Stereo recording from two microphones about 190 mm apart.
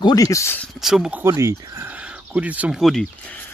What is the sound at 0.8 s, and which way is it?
Speech, 5° right (ahead or behind).